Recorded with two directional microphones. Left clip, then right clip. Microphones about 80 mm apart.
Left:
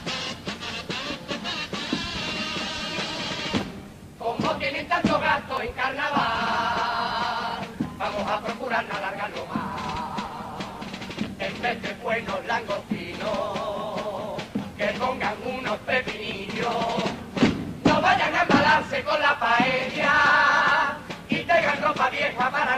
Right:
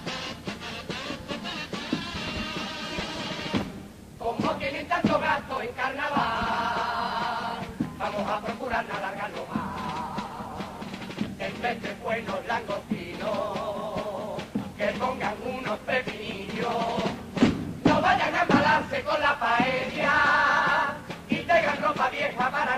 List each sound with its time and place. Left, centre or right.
1.9 s music: right
5.2 s chant: right
8.0 s music: right
16.5 s a sound: right